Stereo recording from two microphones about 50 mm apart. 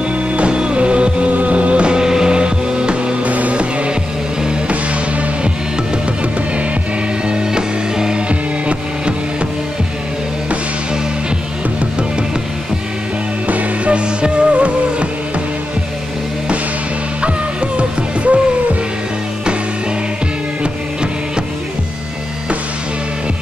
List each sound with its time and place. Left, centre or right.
0.3 s music: right
7.2 s music: centre
13.5 s music: right
17.2 s music: right
20.6 s music: centre